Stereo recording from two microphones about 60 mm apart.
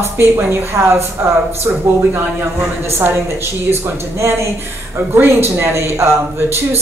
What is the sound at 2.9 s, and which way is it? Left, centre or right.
A woman's voice, right.